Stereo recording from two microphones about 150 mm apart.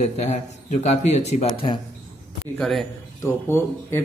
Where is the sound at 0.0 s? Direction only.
45° left (ahead or behind).